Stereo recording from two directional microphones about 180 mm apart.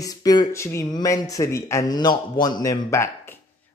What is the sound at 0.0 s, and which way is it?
A man's voice, 20° left (ahead or behind).